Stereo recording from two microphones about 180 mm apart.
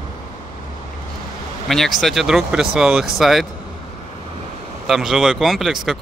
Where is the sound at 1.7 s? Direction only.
Centre (ahead or behind).